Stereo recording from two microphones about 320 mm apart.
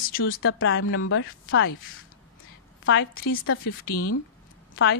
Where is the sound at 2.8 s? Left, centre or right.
Left.